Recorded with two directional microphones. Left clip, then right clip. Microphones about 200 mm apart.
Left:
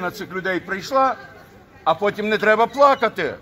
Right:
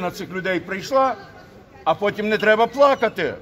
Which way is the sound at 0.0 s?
25° right (ahead or behind).